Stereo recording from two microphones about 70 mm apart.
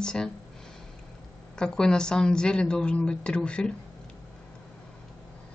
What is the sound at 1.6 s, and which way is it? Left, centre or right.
A woman's voice, centre.